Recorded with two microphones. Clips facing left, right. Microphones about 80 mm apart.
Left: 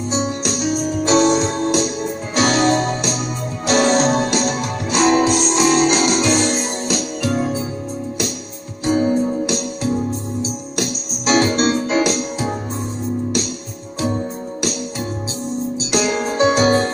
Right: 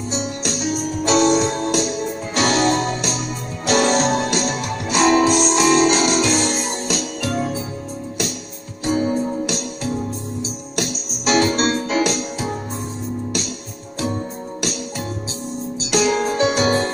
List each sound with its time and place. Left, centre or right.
0.1 s music: left
8.8 s music: left
10.8 s music: left
15.9 s music: left